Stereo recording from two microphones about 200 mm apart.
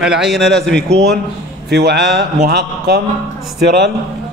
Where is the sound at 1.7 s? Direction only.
55° right (ahead or behind).